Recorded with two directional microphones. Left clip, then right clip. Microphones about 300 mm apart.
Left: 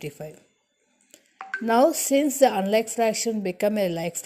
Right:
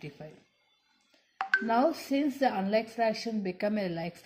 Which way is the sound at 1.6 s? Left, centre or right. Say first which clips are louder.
Left 8 dB; left.